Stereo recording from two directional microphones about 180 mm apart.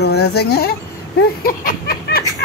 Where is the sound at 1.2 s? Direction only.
55° left (ahead or behind).